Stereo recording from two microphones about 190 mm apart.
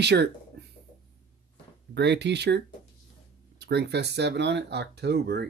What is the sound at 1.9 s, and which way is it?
Speech, 65° right (ahead or behind).